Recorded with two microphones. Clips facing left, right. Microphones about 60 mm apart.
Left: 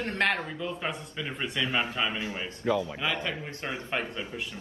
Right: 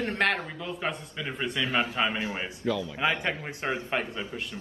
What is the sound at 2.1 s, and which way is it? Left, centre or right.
Speech, right.